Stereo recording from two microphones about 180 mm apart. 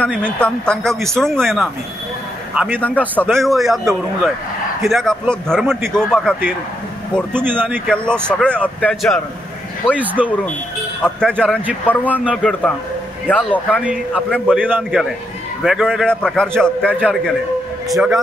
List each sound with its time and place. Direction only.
0.0 s a man's voice: 5° left (ahead or behind)
2.8 s a man's voice: 10° left (ahead or behind)
4.8 s a man's voice: centre (ahead or behind)
7.3 s speech: 10° right (ahead or behind)
7.9 s a man's voice: 5° left (ahead or behind)
9.9 s speech: 10° right (ahead or behind)
11.0 s a man's voice: 5° left (ahead or behind)
13.7 s a man's voice: 5° right (ahead or behind)